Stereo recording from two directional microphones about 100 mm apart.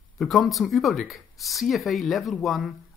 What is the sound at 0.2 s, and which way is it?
Speech, centre (ahead or behind).